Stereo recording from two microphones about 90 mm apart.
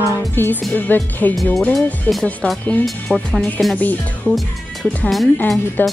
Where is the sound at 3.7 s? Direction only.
20° left (ahead or behind).